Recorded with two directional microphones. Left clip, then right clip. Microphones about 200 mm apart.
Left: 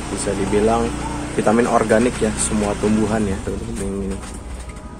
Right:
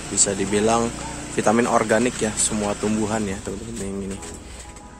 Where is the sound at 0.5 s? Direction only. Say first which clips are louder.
Left 3 dB; 45° right (ahead or behind).